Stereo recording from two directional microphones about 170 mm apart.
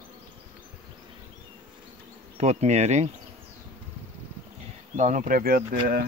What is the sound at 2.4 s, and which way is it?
Bee, 40° right (ahead or behind).